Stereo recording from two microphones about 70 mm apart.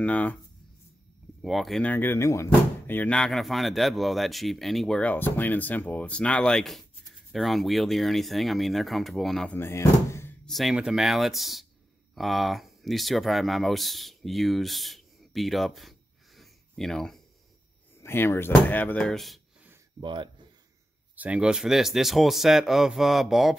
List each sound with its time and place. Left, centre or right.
0.0 s speech: left
1.4 s speech: centre
1.8 s speech: left
3.1 s speech: centre
5.0 s speech: left; by 9.5 s centre
9.6 s speech: left
10.4 s speech: centre
18.0 s speech: left
19.0 s speech: centre
21.2 s speech: centre